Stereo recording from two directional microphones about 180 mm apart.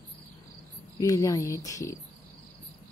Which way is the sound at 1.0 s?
15° left (ahead or behind).